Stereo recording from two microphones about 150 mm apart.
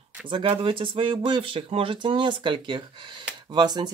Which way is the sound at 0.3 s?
35° right (ahead or behind).